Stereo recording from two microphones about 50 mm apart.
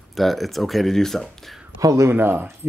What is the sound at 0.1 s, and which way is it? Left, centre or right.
Speech, centre.